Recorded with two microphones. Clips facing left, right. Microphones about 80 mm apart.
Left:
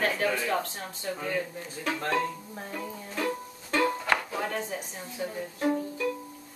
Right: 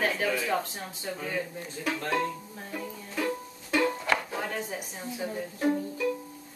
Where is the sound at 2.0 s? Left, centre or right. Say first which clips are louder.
Left 1 dB; centre.